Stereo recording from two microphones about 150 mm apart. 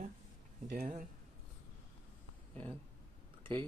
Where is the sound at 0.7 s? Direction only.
65° right (ahead or behind).